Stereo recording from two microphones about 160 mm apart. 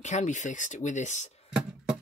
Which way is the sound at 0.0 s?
50° left (ahead or behind).